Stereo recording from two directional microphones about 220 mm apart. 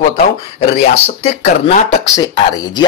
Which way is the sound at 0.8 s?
30° left (ahead or behind).